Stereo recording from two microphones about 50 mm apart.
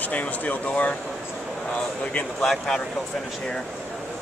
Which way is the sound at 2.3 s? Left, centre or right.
Centre.